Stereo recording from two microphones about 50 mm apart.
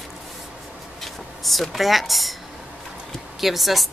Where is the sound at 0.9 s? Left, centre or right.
Centre.